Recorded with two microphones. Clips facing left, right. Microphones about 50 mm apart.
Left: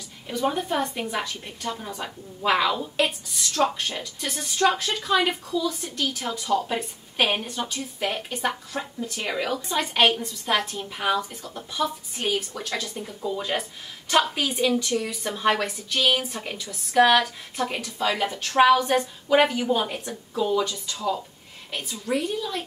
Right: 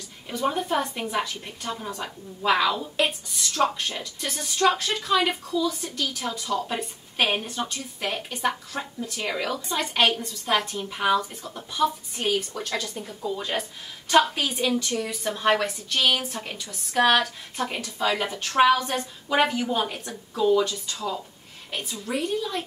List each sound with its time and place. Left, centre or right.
0.3 s a woman's voice: centre
5.3 s a woman's voice: centre
5.7 s a woman's voice: centre
18.8 s speech: centre
19.2 s a woman's voice: centre
22.1 s a woman's voice: centre